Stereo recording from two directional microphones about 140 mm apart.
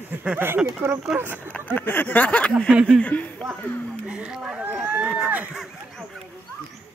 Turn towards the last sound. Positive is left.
turn(degrees=0)  # may be behind; listen again after turning